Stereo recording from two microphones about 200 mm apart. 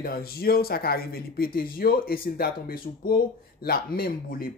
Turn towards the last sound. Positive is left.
turn(degrees=50)  # may be behind; listen again after turning